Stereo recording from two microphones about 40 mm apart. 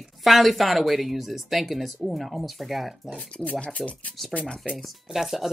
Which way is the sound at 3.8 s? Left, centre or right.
Centre.